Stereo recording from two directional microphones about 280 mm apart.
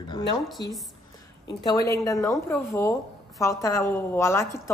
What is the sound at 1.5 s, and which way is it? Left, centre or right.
Speech, centre.